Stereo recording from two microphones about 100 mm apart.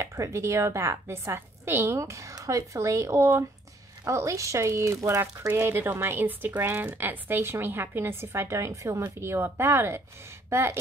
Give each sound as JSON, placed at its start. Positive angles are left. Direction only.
{"t": 0.0, "sound": "speech", "side_deg": -30}